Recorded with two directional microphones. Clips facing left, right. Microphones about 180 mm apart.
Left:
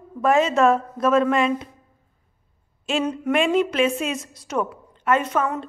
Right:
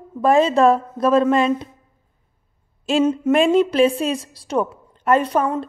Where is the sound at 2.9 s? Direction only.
30° right (ahead or behind).